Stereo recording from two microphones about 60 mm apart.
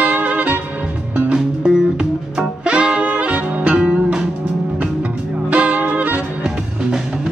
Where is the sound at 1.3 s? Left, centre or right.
Centre.